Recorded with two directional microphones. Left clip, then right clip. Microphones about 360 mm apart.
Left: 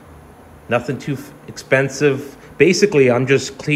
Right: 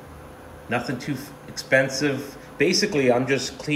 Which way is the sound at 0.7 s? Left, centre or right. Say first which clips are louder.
Left 7 dB; centre.